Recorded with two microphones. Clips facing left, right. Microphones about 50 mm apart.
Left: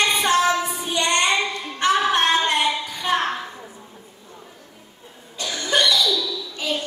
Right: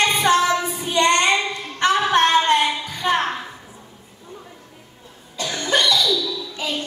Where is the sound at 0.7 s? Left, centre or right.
Left.